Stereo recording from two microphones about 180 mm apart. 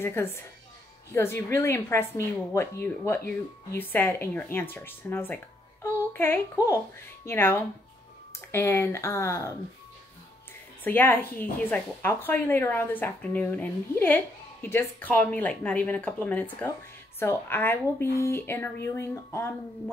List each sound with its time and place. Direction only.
0.0 s a woman's voice: 15° left (ahead or behind)
10.8 s a woman's voice: 10° left (ahead or behind)